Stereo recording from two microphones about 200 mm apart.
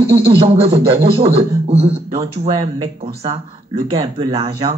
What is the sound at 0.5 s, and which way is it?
Speech, 30° right (ahead or behind).